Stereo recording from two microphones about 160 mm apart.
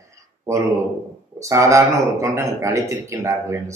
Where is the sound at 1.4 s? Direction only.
20° right (ahead or behind).